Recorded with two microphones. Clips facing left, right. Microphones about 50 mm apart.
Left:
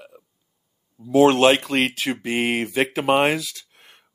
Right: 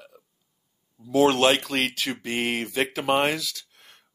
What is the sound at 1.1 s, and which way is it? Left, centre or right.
Speech, centre.